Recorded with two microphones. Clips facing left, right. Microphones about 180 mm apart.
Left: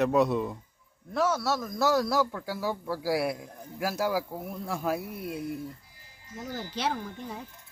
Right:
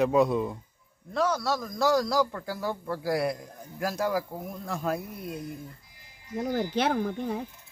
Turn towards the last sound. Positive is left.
turn(degrees=-60)  # may be behind; listen again after turning